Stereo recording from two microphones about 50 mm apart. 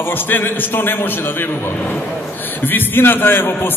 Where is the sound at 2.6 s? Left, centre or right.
Left.